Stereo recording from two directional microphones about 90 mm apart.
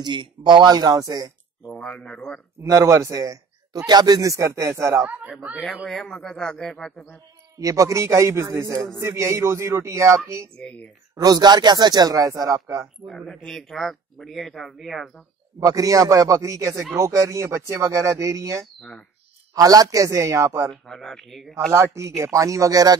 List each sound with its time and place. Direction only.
0.0 s speech: 60° right (ahead or behind)
1.8 s speech: 15° left (ahead or behind)
2.6 s a man's voice: 35° right (ahead or behind)
5.9 s speech: 5° left (ahead or behind)
7.5 s a man's voice: 40° right (ahead or behind)
10.6 s speech: 10° left (ahead or behind)
11.1 s speech: 45° right (ahead or behind)
12.8 s speech: centre (ahead or behind)
15.6 s a man's voice: 40° right (ahead or behind)
18.8 s speech: 5° left (ahead or behind)
19.5 s a man's voice: 40° right (ahead or behind)
20.7 s speech: 5° left (ahead or behind)
21.7 s a man's voice: 30° right (ahead or behind)